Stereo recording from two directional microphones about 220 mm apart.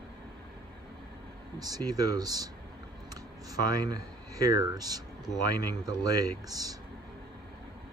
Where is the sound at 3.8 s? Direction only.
15° right (ahead or behind).